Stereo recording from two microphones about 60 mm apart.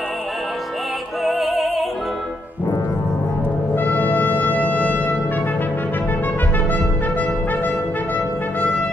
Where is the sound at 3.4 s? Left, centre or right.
Left.